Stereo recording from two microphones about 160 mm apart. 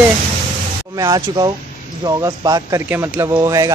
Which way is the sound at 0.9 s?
25° right (ahead or behind).